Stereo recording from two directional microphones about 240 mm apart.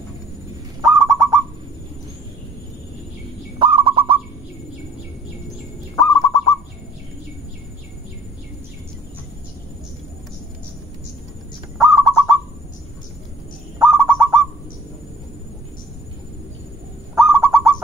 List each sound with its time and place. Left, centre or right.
0.8 s owl: centre
3.5 s bird: right
5.9 s bird: centre
11.9 s bird: centre
13.7 s owl: centre
17.1 s owl: centre